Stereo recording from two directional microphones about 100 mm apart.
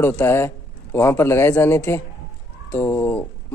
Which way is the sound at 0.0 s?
25° left (ahead or behind).